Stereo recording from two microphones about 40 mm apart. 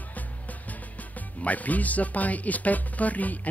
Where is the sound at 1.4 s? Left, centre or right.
Left.